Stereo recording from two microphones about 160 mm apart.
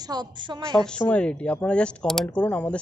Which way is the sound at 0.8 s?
5° left (ahead or behind).